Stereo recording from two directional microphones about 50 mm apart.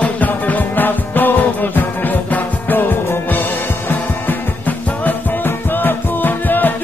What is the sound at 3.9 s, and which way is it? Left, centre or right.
Music, left.